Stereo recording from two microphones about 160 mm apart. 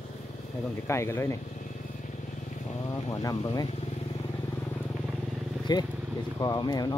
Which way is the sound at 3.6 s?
40° left (ahead or behind).